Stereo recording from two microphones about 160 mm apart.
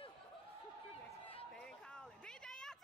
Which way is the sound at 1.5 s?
5° left (ahead or behind).